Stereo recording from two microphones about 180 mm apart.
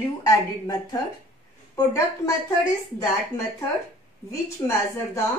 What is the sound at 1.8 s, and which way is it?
Speech, 15° left (ahead or behind).